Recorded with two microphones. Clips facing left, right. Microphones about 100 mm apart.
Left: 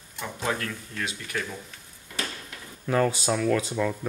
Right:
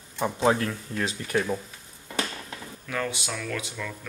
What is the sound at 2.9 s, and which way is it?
Speech, 35° left (ahead or behind).